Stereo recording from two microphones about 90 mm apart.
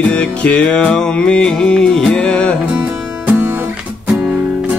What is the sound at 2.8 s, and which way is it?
Music, 20° right (ahead or behind).